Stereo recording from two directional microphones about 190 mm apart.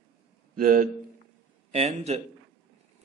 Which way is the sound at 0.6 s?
50° right (ahead or behind).